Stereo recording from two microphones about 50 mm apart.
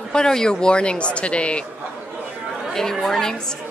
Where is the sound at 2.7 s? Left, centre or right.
Centre.